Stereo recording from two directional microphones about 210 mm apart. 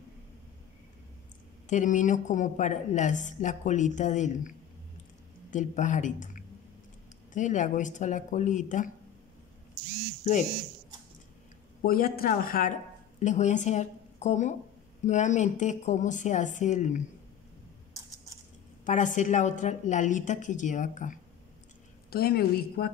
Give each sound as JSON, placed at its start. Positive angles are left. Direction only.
{"t": 1.7, "sound": "a woman's voice", "side_deg": 35}
{"t": 11.8, "sound": "a woman's voice", "side_deg": 45}
{"t": 18.9, "sound": "a woman's voice", "side_deg": 35}
{"t": 22.1, "sound": "speech", "side_deg": 45}